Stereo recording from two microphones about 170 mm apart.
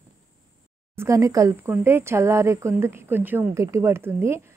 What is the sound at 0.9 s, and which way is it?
A woman's voice, 20° right (ahead or behind).